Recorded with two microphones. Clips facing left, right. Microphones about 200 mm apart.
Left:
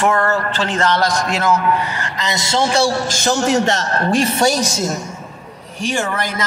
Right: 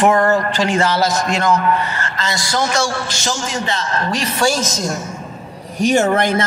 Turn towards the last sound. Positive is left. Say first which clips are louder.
# right 7 dB
turn(degrees=-25)  # may be behind; listen again after turning